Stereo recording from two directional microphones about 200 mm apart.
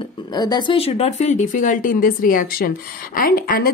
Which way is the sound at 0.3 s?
20° left (ahead or behind).